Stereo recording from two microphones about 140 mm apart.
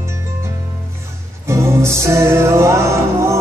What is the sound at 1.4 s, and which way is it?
Music, 20° right (ahead or behind).